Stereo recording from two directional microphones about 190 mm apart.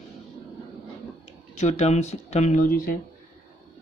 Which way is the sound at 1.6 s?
35° left (ahead or behind).